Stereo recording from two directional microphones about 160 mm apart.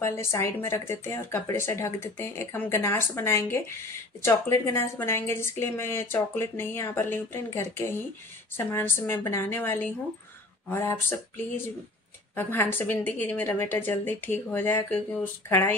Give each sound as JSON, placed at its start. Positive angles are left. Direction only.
{"t": 0.0, "sound": "a woman's voice", "side_deg": 15}